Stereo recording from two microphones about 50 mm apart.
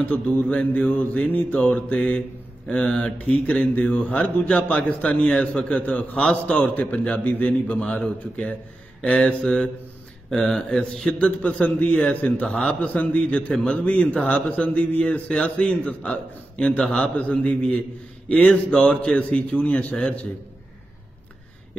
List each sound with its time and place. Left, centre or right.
0.0 s speech: left
9.0 s speech: left
12.4 s speech: centre
12.8 s speech: left